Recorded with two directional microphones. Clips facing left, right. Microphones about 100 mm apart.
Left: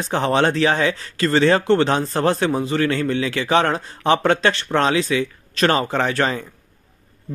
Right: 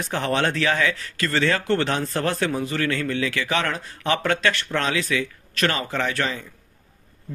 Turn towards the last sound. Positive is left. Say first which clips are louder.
# left 5 dB
turn(degrees=40)  # may be behind; listen again after turning